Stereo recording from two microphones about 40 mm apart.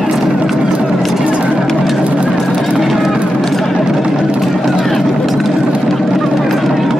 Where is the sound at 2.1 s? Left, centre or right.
Right.